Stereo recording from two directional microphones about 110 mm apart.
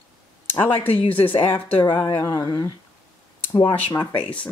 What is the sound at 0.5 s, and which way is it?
Speech, 20° left (ahead or behind).